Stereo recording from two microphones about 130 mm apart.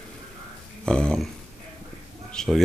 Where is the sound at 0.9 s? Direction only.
5° left (ahead or behind).